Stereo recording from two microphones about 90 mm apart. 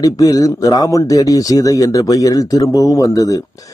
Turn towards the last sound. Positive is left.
turn(degrees=40)  # may be behind; listen again after turning